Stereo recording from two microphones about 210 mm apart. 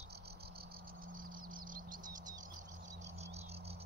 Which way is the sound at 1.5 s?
40° right (ahead or behind).